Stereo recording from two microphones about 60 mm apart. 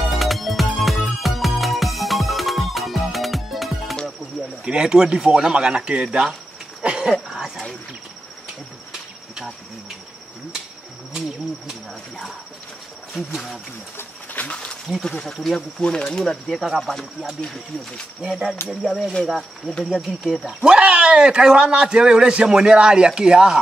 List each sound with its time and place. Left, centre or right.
0.2 s music: centre
4.6 s a man's voice: centre
6.8 s cricket: centre
13.3 s speech: centre
14.3 s a sound: left
15.0 s speech: centre
15.8 s speech: centre
16.5 s speech: centre
17.4 s speech: centre
18.3 s speech: centre
20.4 s a man's voice: centre